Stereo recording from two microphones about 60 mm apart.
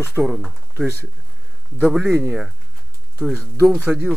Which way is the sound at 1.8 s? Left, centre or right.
Centre.